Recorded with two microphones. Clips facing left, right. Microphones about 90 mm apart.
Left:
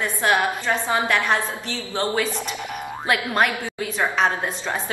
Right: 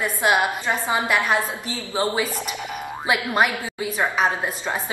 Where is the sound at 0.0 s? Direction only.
10° right (ahead or behind).